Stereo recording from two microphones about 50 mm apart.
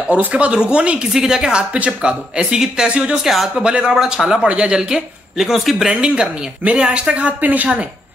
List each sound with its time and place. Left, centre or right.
0.1 s speech: right
3.3 s speech: centre
3.6 s speech: centre
5.9 s speech: centre